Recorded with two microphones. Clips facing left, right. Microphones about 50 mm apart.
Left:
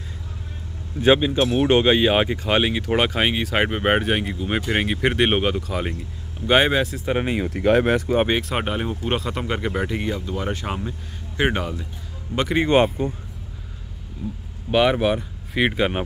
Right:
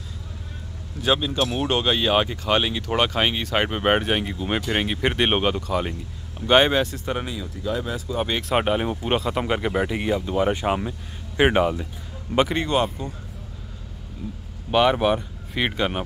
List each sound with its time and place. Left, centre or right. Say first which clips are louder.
1.0 s speech: left 5 dB; left; by 7.2 s centre
7.2 s speech: left 9 dB; left
8.4 s speech: right 3 dB; centre
12.6 s speech: left 5 dB; left
14.7 s speech: even; centre